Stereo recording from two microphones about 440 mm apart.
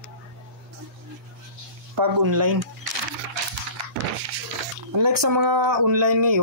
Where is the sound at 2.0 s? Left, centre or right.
Right.